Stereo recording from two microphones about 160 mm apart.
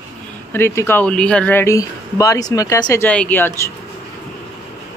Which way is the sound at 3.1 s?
10° left (ahead or behind).